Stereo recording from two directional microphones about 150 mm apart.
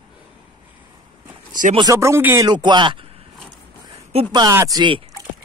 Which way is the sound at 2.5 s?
30° right (ahead or behind).